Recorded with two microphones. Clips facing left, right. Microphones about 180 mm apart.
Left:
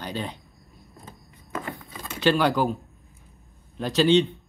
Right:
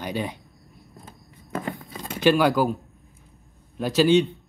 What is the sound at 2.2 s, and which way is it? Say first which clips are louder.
Speech: right 2 dB; 10° right (ahead or behind).